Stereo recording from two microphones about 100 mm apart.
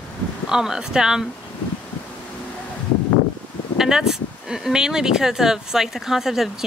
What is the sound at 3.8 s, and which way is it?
Speech, 5° right (ahead or behind).